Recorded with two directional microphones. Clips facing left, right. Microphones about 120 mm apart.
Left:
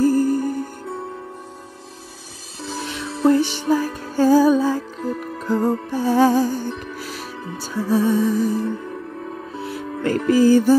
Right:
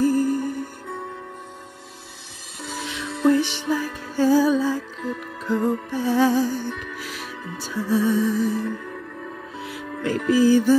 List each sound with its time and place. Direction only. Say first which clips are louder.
0.0 s music: left 3 dB; 35° left (ahead or behind)
2.6 s music: left 3 dB; 40° left (ahead or behind)